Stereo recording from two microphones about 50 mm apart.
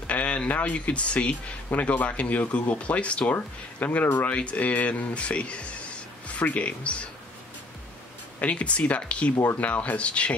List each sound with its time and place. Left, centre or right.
0.0 s speech: left
1.7 s speech: left
3.3 s speech: left
8.4 s speech: left